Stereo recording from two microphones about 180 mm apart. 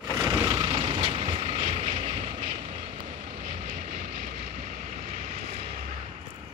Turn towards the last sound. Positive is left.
turn(degrees=-35)  # may be behind; listen again after turning